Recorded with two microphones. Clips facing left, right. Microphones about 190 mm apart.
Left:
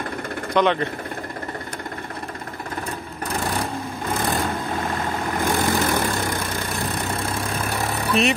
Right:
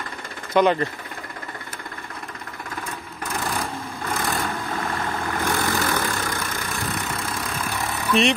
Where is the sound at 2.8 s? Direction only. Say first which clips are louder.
Left 2 dB; 35° left (ahead or behind).